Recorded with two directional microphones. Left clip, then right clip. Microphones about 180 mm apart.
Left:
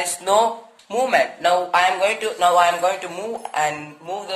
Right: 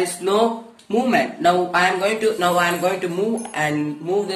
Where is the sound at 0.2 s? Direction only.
40° left (ahead or behind).